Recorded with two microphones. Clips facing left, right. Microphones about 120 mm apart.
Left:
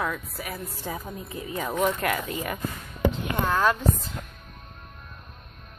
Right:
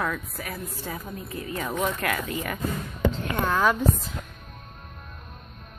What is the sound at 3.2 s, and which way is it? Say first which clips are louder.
Speech: right 1 dB; centre (ahead or behind).